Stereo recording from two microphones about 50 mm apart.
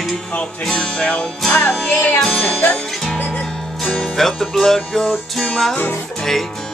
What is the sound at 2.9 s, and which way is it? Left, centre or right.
Music, centre.